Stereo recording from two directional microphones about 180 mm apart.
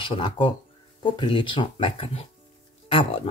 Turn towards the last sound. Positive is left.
turn(degrees=30)  # may be behind; listen again after turning